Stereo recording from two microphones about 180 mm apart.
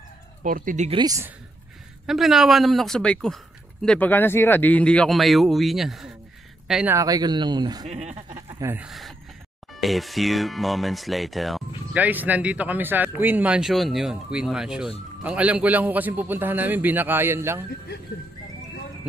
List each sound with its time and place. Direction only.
0.4 s speech: 50° right (ahead or behind)
0.8 s speech: 25° right (ahead or behind)
2.0 s speech: centre (ahead or behind)
7.0 s speech: 20° right (ahead or behind)
7.8 s speech: 40° right (ahead or behind)
8.5 s speech: 10° right (ahead or behind)